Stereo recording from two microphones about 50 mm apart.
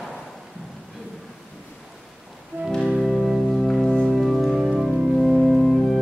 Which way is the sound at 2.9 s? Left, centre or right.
Centre.